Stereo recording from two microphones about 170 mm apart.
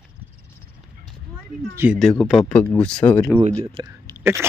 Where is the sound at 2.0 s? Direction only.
Centre (ahead or behind).